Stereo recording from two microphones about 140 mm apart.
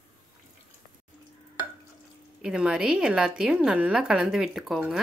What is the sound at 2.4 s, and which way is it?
A woman's voice, 5° right (ahead or behind).